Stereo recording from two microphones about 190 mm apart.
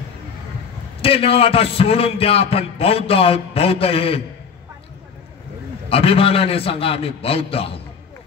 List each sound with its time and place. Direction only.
1.0 s a man's voice: 30° left (ahead or behind)
5.9 s a man's voice: 30° left (ahead or behind)